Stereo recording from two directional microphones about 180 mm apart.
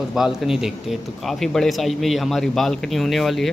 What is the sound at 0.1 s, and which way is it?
Speech, centre (ahead or behind).